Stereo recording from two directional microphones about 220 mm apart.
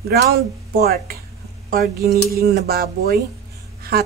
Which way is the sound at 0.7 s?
40° right (ahead or behind).